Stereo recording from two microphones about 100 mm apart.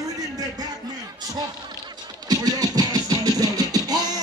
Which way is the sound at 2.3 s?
40° right (ahead or behind).